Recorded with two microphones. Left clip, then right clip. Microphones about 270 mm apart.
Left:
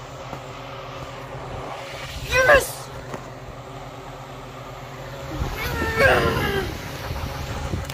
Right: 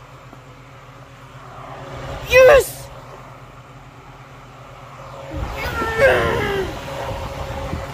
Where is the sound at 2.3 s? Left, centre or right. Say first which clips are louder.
Right 6 dB; right.